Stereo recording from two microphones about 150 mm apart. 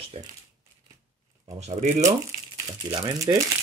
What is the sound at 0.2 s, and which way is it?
Speech, 40° right (ahead or behind).